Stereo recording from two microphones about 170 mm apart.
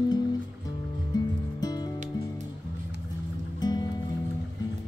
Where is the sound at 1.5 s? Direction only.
25° left (ahead or behind).